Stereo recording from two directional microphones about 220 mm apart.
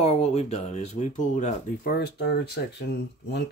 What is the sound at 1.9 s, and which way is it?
Speech, 50° left (ahead or behind).